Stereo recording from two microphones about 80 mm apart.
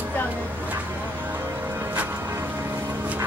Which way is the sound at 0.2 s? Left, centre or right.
Left.